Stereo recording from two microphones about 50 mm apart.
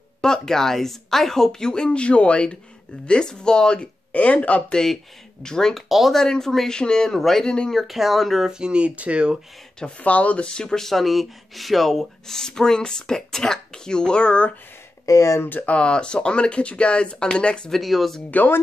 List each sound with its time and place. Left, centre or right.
0.2 s speech: centre; by 4.7 s left
5.4 s speech: centre
5.9 s speech: centre
6.1 s speech: centre
7.4 s speech: centre
7.7 s speech: centre
8.5 s speech: centre
9.8 s speech: left
15.0 s speech: left
15.6 s speech: left
17.6 s speech: centre